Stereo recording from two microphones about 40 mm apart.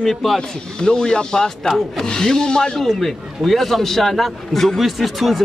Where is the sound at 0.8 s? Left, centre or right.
Left.